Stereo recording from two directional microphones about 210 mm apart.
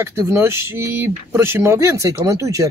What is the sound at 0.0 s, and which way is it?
Speech, 10° right (ahead or behind).